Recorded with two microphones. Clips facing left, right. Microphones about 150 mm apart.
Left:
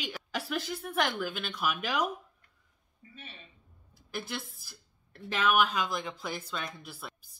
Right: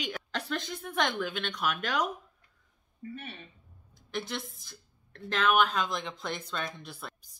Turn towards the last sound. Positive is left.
turn(degrees=5)  # may be behind; listen again after turning